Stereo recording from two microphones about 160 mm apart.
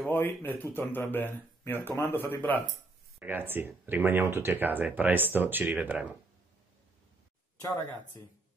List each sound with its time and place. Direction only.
0.0 s speech: 15° left (ahead or behind)
3.2 s speech: 10° right (ahead or behind)